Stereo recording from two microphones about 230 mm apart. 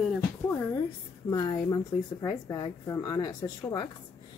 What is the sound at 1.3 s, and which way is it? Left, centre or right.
Speech, centre.